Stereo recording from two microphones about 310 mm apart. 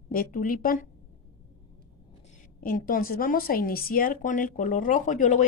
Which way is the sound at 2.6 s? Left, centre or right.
Left.